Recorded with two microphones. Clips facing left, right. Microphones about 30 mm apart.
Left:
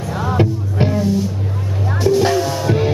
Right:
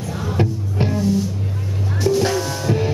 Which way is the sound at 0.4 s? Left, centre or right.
Centre.